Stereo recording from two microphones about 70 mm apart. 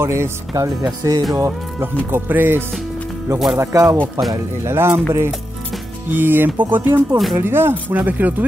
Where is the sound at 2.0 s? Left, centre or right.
Right.